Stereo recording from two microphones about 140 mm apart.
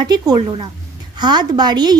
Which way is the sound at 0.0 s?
30° right (ahead or behind).